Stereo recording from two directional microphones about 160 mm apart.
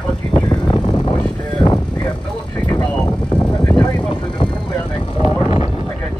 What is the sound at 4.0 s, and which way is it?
Vehicle, 30° left (ahead or behind).